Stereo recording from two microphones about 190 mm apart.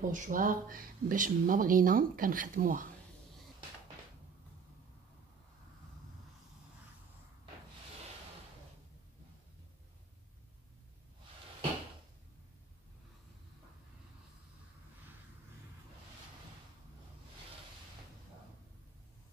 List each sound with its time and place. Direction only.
0.0 s speech: 45° right (ahead or behind)